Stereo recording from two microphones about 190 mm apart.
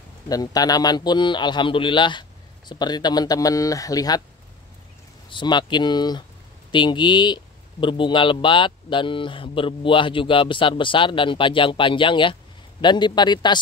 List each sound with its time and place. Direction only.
0.3 s speech: 20° left (ahead or behind)
5.3 s speech: 25° left (ahead or behind)